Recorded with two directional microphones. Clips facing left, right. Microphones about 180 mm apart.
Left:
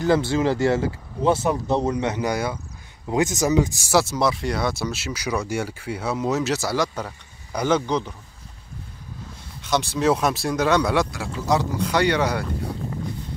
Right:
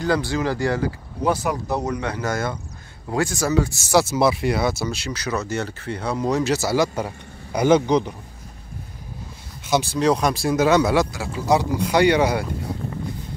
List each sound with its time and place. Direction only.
0.0 s speech: 20° left (ahead or behind)
3.9 s speech: 5° right (ahead or behind)
9.7 s speech: centre (ahead or behind)